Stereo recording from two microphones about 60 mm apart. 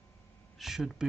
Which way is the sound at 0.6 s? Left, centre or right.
Centre.